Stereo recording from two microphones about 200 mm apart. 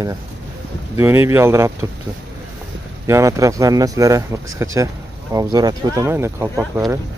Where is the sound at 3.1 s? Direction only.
15° right (ahead or behind).